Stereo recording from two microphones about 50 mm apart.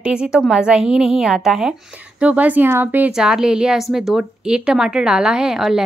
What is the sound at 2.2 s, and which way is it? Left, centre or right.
Speech, right.